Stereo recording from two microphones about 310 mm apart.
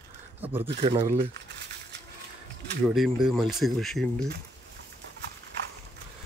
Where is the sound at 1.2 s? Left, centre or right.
Right.